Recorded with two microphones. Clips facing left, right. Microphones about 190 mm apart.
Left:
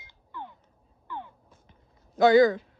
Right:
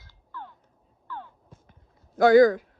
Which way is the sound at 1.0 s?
15° left (ahead or behind).